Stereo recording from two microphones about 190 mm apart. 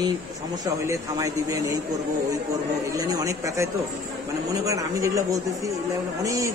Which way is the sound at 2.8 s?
20° right (ahead or behind).